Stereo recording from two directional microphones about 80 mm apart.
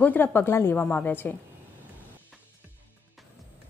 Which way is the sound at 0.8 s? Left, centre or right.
Left.